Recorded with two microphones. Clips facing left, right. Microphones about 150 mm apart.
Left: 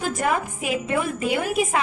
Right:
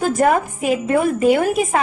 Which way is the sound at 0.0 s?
45° right (ahead or behind).